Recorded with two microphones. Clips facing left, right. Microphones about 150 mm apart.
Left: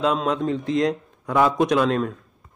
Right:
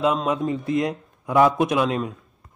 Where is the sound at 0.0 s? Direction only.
5° right (ahead or behind).